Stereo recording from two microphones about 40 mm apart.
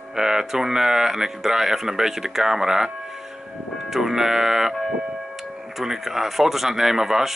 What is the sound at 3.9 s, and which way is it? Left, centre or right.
Speech, centre.